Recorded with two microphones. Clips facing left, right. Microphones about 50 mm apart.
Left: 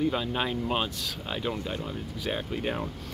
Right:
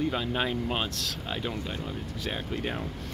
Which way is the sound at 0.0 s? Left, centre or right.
Centre.